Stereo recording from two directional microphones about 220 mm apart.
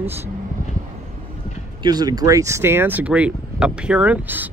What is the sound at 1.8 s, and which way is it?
Speech, 20° right (ahead or behind).